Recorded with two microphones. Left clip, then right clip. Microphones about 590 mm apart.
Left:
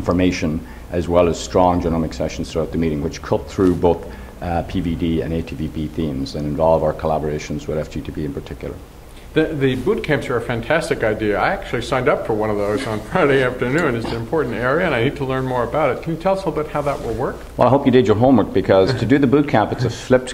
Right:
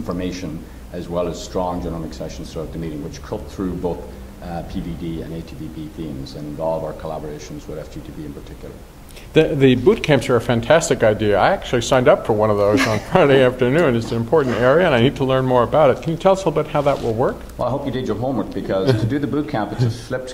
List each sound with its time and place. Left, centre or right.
0.0 s speech: left
6.6 s speech: left
9.3 s speech: right
17.6 s speech: left